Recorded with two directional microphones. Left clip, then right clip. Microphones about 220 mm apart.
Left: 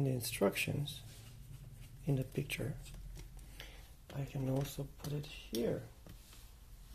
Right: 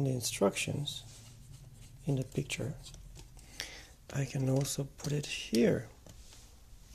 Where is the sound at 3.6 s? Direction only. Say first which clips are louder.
Right 10 dB; 25° right (ahead or behind).